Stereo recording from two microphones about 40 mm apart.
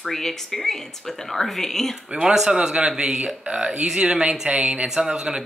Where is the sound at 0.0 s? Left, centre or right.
Centre.